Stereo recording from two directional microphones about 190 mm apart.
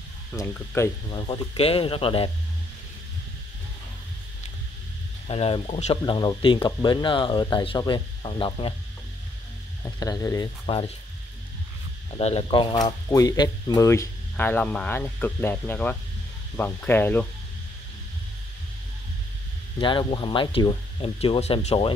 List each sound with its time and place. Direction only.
0.3 s speech: 10° left (ahead or behind)
0.7 s speech: 20° left (ahead or behind)
5.3 s speech: 30° left (ahead or behind)
9.8 s speech: 20° left (ahead or behind)
12.1 s speech: 30° left (ahead or behind); by 17.3 s 10° left (ahead or behind)
19.8 s speech: 25° left (ahead or behind)